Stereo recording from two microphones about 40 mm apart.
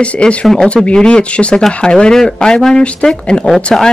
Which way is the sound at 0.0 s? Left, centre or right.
Left.